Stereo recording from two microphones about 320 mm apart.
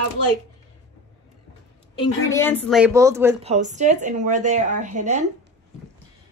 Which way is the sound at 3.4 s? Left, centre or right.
Right.